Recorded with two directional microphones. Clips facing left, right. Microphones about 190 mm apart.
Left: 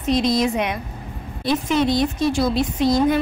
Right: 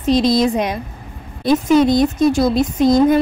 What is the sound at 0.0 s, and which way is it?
A woman's voice, 35° right (ahead or behind).